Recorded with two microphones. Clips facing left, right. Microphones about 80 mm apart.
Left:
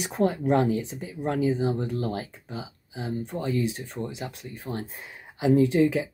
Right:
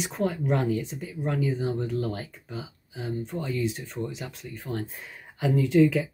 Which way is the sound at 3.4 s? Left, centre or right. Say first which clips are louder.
Left 3 dB; left.